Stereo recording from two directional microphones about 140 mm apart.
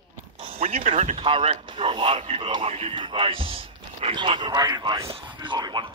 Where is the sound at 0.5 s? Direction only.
45° right (ahead or behind).